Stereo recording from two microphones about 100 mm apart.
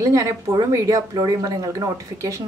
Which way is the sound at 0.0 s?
30° right (ahead or behind).